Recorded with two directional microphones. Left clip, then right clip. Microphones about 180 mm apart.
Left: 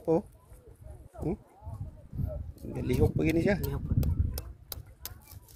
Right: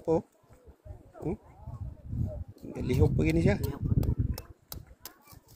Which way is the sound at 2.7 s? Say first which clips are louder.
Even; centre (ahead or behind).